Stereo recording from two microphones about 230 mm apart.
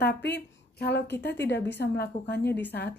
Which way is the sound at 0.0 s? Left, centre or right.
Left.